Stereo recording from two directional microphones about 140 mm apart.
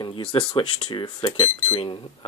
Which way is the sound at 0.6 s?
35° left (ahead or behind).